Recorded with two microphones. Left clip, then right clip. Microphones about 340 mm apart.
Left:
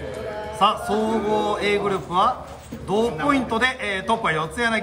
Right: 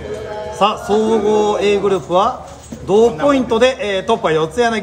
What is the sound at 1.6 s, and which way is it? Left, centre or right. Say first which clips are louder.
A man's voice: right 7 dB; centre.